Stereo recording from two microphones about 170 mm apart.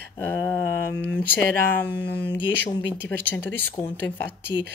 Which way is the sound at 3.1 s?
10° left (ahead or behind).